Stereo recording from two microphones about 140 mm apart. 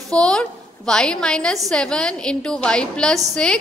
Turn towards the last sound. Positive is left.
turn(degrees=5)  # may be behind; listen again after turning